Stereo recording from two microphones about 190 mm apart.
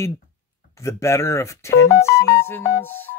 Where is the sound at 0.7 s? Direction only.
15° left (ahead or behind).